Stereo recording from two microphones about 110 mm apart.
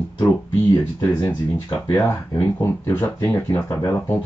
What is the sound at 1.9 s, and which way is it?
Speech, 30° left (ahead or behind).